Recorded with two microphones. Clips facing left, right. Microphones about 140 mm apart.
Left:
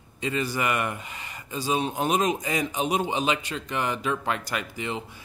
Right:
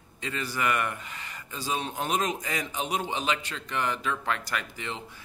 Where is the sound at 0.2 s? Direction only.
15° left (ahead or behind).